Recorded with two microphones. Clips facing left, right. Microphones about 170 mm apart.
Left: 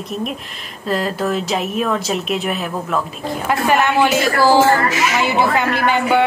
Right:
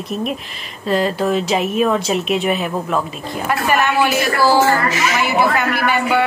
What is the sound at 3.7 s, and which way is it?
A man's voice, 15° left (ahead or behind).